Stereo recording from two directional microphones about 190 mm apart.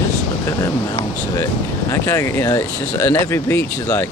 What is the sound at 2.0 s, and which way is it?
Speech, 15° left (ahead or behind).